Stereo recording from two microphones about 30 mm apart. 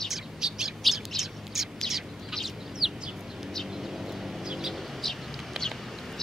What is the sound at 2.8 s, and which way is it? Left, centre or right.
Chicken, centre.